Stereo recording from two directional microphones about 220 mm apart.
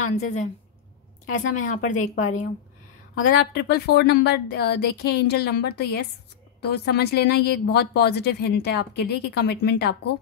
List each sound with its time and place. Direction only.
0.1 s speech: 30° left (ahead or behind)
3.3 s a woman's voice: 45° left (ahead or behind)